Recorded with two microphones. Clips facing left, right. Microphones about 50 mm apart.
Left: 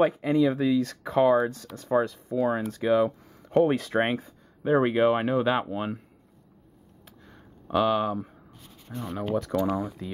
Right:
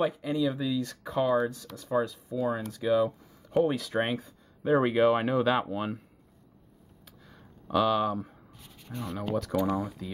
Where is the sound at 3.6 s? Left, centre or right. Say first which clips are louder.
Left 4 dB; left.